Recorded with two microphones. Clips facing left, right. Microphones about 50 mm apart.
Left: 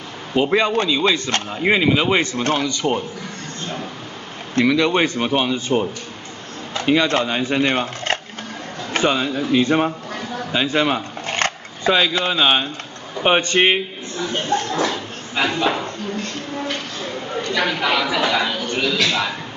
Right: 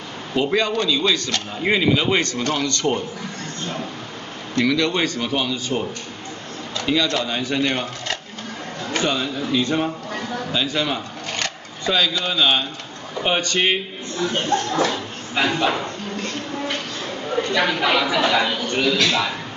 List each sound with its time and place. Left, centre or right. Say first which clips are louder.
0.3 s speech: left 3 dB; left
4.6 s speech: left 3 dB; centre; by 8.2 s left
8.9 s speech: left 4 dB; left
10.5 s a sound: left 5 dB; left
11.9 s speech: left 3 dB; left
14.7 s speech: even; centre
17.6 s a man's voice: even; centre